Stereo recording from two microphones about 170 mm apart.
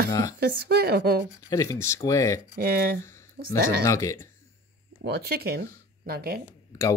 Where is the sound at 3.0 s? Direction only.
15° left (ahead or behind).